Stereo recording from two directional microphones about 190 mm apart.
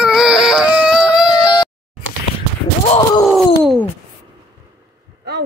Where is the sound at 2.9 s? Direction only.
20° left (ahead or behind).